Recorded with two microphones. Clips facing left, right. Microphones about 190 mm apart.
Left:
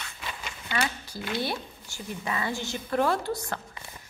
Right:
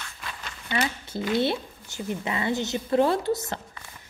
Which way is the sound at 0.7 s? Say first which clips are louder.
Right 3 dB; 20° right (ahead or behind).